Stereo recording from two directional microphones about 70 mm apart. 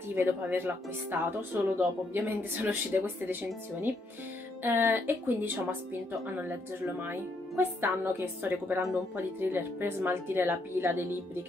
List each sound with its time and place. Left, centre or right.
0.1 s speech: right
4.6 s speech: right
7.0 s speech: right